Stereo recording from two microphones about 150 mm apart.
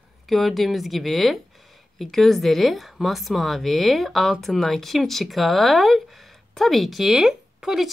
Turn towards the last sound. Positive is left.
turn(degrees=-5)  # may be behind; listen again after turning